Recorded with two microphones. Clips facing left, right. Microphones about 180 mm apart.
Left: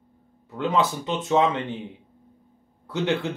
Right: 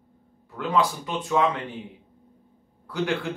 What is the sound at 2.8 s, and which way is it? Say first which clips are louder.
Speech: left 2 dB; 25° left (ahead or behind).